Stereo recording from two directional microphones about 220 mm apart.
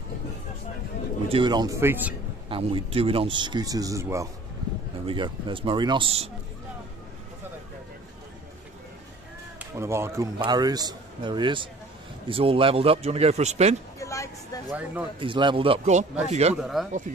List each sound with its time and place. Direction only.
1.3 s a man's voice: 20° right (ahead or behind)
2.5 s speech: 25° right (ahead or behind)
9.6 s a man's voice: 10° right (ahead or behind); by 13.7 s 30° right (ahead or behind)
13.9 s a sound: 15° left (ahead or behind)
14.7 s a man's voice: 5° right (ahead or behind)
15.1 s speech: 20° right (ahead or behind)
16.6 s speech: centre (ahead or behind)